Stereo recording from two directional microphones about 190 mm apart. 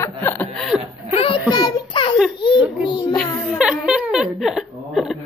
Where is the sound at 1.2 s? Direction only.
25° left (ahead or behind).